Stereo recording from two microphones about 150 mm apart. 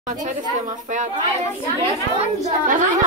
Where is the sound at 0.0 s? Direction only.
55° right (ahead or behind).